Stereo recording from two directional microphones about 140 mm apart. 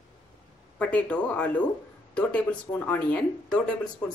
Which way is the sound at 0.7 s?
10° left (ahead or behind).